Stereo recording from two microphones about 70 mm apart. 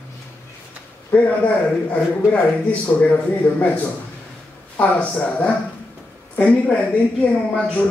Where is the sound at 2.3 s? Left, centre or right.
Left.